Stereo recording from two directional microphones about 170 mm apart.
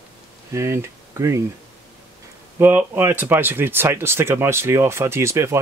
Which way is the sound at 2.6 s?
15° right (ahead or behind).